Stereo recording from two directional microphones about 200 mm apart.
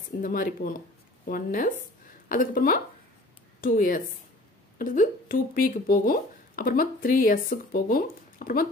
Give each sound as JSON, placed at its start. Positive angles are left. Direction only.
{"t": 0.2, "sound": "speech", "side_deg": 45}